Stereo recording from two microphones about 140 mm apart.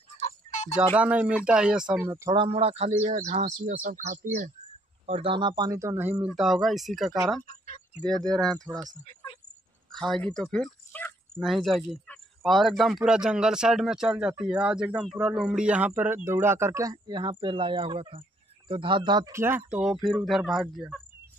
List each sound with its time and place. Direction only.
0.9 s speech: 10° right (ahead or behind)
2.0 s speech: 20° right (ahead or behind)
2.3 s speech: 40° right (ahead or behind); by 4.5 s 65° right (ahead or behind)
5.0 s speech: 45° right (ahead or behind); by 6.3 s 15° right (ahead or behind)
6.3 s speech: centre (ahead or behind)
7.4 s speech: 55° left (ahead or behind)
8.0 s speech: 5° left (ahead or behind)
8.7 s speech: 30° right (ahead or behind)
9.8 s dog: 5° left (ahead or behind)
11.3 s speech: centre (ahead or behind); by 19.3 s 30° right (ahead or behind)
19.3 s speech: 15° right (ahead or behind)
19.8 s speech: centre (ahead or behind)